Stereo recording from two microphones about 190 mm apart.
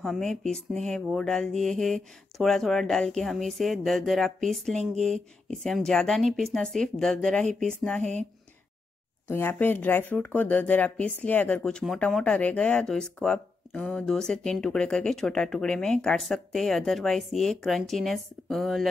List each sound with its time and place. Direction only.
0.0 s speech: centre (ahead or behind)
8.0 s speech: 40° right (ahead or behind)
9.3 s speech: 10° left (ahead or behind)